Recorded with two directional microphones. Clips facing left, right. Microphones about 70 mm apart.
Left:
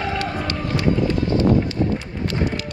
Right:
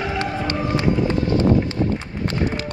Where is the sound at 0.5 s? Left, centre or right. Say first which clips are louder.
Even; right.